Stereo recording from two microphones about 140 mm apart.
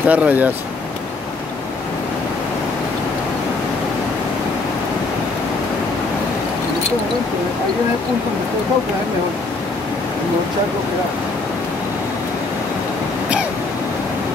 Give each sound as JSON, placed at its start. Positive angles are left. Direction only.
{"t": 0.0, "sound": "speech", "side_deg": -10}